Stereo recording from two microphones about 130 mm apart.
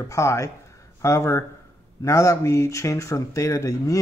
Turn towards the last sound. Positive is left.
turn(degrees=25)  # may be behind; listen again after turning